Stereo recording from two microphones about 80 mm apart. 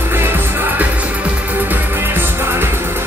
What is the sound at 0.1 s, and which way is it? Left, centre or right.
Music, right.